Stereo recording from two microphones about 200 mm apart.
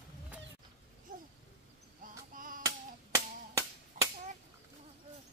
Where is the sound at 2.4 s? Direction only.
45° right (ahead or behind).